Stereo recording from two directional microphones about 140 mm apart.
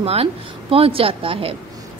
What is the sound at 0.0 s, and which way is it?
A woman's voice, 45° right (ahead or behind).